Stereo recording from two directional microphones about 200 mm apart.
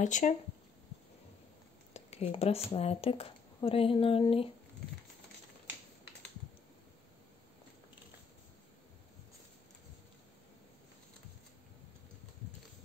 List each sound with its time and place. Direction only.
0.0 s speech: 40° left (ahead or behind)
2.0 s speech: 35° left (ahead or behind)